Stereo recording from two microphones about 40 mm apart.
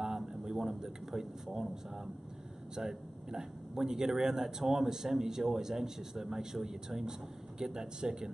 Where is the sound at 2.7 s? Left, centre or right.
Centre.